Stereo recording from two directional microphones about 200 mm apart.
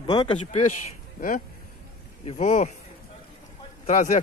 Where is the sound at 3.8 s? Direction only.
35° left (ahead or behind).